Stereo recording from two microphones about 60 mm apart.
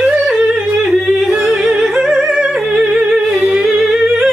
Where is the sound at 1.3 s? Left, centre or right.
Centre.